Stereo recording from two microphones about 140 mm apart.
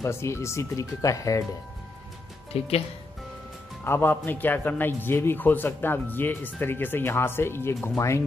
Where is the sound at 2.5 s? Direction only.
45° left (ahead or behind).